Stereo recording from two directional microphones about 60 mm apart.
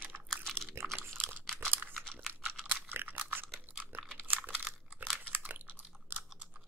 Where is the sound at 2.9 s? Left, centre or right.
Right.